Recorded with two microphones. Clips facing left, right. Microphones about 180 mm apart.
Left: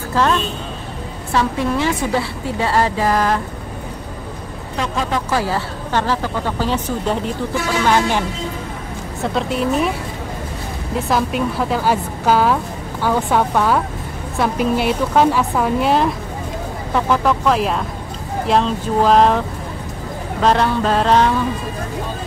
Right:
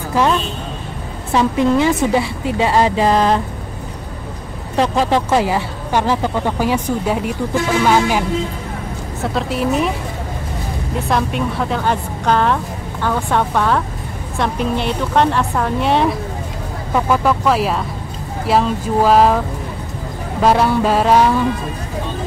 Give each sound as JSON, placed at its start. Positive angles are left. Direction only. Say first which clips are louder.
{"t": 0.1, "sound": "a woman's voice", "louder": "right 1 dB", "side_deg": -15}
{"t": 4.7, "sound": "speech", "louder": "right 6 dB", "side_deg": -35}
{"t": 5.3, "sound": "a woman's voice", "louder": "right 4 dB", "side_deg": -15}
{"t": 11.1, "sound": "a woman's voice", "louder": "even", "side_deg": 0}
{"t": 20.4, "sound": "a woman's voice", "louder": "right 2 dB", "side_deg": -10}